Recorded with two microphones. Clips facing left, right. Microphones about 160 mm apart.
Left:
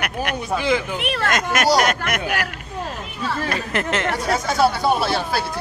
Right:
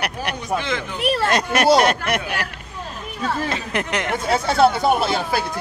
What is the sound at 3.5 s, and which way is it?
Speech, 15° right (ahead or behind).